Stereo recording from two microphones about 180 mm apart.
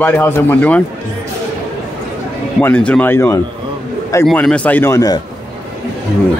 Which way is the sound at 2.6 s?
10° left (ahead or behind).